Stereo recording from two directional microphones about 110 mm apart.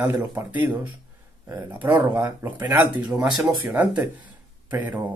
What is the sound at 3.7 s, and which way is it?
Speech, 10° right (ahead or behind).